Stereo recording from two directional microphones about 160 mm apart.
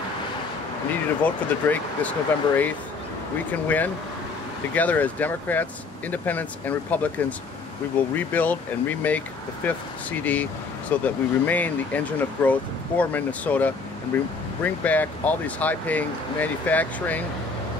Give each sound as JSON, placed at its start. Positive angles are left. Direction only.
{"t": 1.2, "sound": "speech", "side_deg": 10}